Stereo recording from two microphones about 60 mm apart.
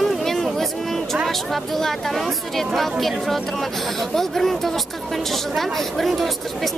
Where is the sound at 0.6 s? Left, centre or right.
Centre.